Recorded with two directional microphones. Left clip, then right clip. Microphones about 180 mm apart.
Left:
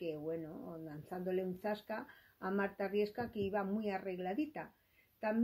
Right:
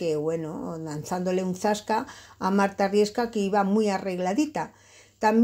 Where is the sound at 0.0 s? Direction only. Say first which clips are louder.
Right 15 dB; 30° right (ahead or behind).